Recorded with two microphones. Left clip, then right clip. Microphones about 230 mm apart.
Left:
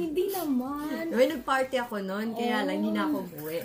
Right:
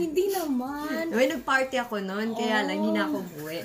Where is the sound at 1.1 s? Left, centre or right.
Centre.